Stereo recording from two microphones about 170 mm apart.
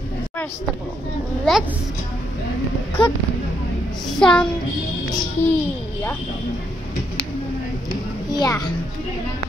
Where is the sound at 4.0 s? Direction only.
5° left (ahead or behind).